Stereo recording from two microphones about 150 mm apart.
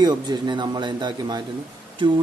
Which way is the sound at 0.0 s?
30° right (ahead or behind).